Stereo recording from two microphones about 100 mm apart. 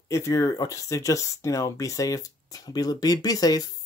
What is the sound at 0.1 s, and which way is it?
Speech, 30° left (ahead or behind).